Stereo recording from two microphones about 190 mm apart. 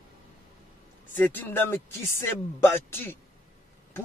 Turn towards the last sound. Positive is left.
turn(degrees=10)  # may be behind; listen again after turning